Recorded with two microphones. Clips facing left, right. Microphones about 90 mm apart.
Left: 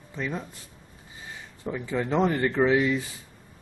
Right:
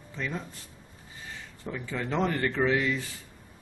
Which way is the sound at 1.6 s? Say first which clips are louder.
Left 5 dB; 15° left (ahead or behind).